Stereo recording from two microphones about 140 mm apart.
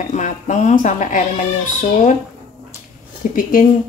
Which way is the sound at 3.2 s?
70° left (ahead or behind).